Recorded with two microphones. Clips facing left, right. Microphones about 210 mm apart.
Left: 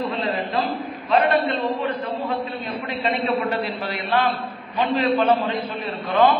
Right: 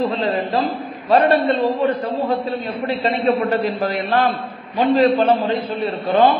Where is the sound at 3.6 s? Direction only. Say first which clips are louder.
Right 7 dB; 45° right (ahead or behind).